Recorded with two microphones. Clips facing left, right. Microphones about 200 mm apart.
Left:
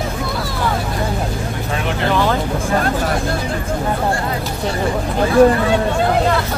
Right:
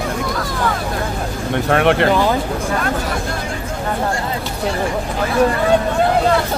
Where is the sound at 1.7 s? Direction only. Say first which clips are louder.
Right 10 dB; 65° right (ahead or behind).